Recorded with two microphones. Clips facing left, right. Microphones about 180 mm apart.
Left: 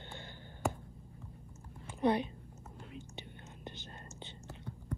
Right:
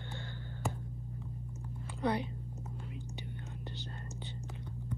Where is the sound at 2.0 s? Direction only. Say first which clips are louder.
Left 3 dB; 20° left (ahead or behind).